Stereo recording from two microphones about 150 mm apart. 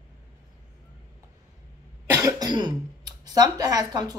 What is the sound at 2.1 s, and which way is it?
Speech, 20° right (ahead or behind).